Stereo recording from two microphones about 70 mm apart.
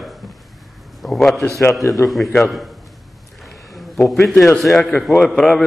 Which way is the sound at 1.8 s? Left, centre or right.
Left.